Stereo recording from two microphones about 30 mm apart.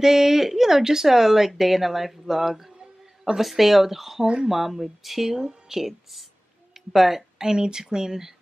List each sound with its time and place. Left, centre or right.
0.0 s speech: centre
7.3 s speech: right